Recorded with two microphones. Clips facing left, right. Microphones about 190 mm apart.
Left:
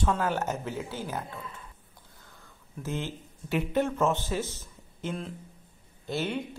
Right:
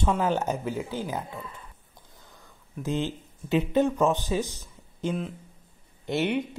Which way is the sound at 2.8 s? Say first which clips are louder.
Right 5 dB; 15° right (ahead or behind).